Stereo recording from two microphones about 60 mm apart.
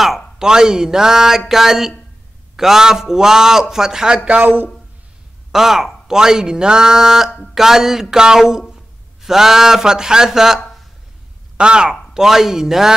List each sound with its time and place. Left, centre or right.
0.4 s a man's voice: centre
4.4 s a man's voice: right
5.5 s a man's voice: centre